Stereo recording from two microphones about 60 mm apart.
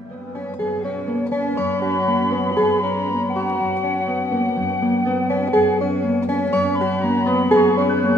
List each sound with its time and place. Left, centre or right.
2.0 s music: left
5.5 s music: left